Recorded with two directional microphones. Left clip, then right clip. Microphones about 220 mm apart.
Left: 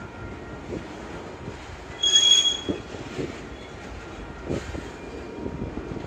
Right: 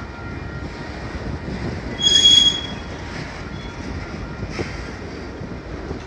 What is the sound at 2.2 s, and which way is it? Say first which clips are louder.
Train wheels squealing: right 6 dB; 40° right (ahead or behind).